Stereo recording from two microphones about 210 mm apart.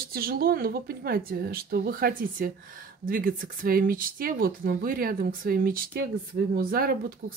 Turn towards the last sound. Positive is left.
turn(degrees=-40)  # may be behind; listen again after turning